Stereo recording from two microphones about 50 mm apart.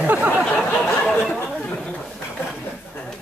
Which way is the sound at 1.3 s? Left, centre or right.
Left.